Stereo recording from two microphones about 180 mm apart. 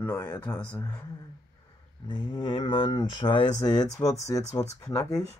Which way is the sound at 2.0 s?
30° left (ahead or behind).